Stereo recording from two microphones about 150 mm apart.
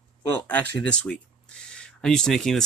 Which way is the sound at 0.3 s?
10° left (ahead or behind).